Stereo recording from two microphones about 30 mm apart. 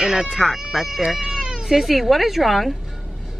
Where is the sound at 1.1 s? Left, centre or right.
Centre.